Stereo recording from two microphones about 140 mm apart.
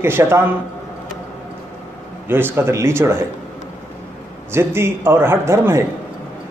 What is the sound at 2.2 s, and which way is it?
Speech, 15° right (ahead or behind).